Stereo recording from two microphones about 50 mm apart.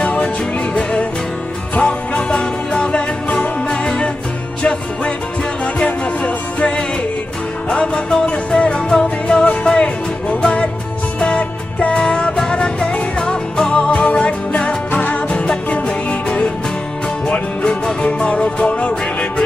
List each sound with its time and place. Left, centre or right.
0.0 s music: left
1.8 s music: left
5.8 s music: left
7.7 s music: centre